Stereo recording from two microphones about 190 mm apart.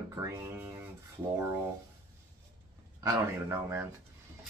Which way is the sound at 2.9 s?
15° right (ahead or behind).